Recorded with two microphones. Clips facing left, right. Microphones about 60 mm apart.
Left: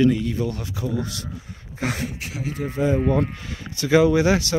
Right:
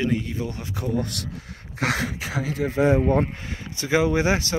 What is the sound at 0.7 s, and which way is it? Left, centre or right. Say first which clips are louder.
Speech: right 1 dB; right.